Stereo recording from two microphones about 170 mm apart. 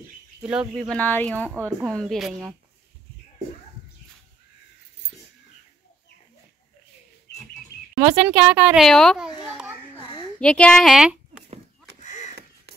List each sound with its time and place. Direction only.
0.4 s a woman's voice: 5° right (ahead or behind)
8.0 s a woman's voice: 10° right (ahead or behind)
10.4 s speech: 5° left (ahead or behind)
12.0 s a sound: 45° left (ahead or behind)